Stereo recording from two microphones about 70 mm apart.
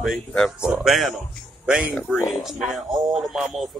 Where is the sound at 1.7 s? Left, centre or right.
Centre.